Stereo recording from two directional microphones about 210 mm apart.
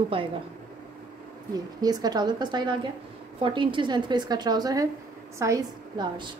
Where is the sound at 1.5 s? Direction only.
20° right (ahead or behind).